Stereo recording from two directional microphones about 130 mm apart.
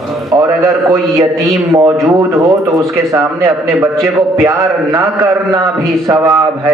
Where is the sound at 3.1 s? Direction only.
25° right (ahead or behind).